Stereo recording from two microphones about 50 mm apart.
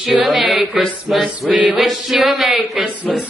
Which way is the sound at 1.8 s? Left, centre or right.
Centre.